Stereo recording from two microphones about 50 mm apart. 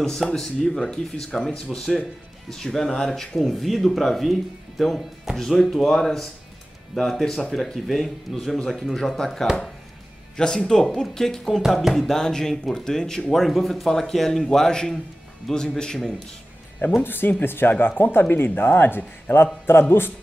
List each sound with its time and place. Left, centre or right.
0.0 s speech: centre
17.0 s speech: left